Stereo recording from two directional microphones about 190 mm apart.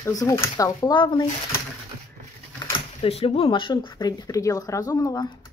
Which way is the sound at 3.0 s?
30° left (ahead or behind).